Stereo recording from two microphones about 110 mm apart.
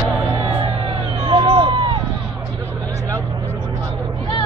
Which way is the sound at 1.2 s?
50° right (ahead or behind).